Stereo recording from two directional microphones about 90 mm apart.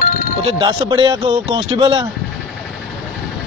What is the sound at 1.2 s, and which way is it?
Speech, 90° right.